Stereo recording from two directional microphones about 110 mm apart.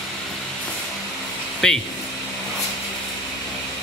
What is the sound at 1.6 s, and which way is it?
Speech, 5° left (ahead or behind).